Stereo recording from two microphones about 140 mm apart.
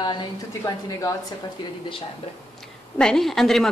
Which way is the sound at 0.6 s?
20° left (ahead or behind).